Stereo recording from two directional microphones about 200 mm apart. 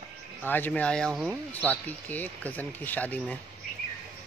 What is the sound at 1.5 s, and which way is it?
Speech, 5° left (ahead or behind).